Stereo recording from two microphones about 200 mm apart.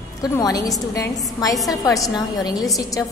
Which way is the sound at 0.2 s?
20° left (ahead or behind).